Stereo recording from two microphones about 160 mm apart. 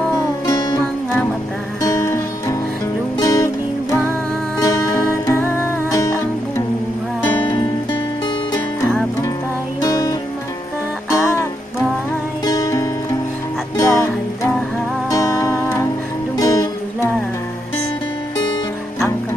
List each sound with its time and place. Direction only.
0.5 s music: 25° left (ahead or behind)
4.6 s music: 20° left (ahead or behind)
9.8 s music: 20° left (ahead or behind)
12.4 s music: 20° left (ahead or behind)